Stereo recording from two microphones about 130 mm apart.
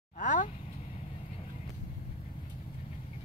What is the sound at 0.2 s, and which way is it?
Vehicle, 80° left.